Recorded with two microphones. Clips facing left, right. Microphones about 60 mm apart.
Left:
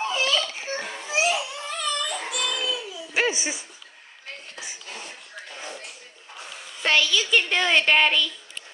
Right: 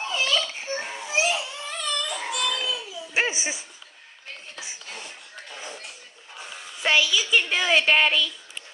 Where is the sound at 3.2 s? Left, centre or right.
Right.